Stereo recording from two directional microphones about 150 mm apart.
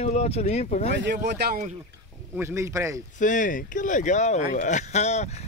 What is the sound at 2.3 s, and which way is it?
Speech, 15° right (ahead or behind).